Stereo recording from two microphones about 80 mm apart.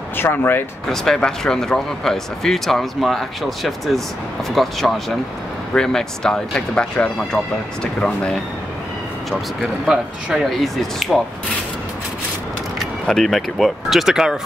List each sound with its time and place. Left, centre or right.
0.2 s speech: left
0.8 s speech: centre
9.6 s speech: centre
13.0 s speech: centre